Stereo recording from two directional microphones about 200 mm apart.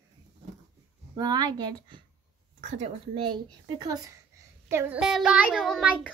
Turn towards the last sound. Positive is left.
turn(degrees=0)  # may be behind; listen again after turning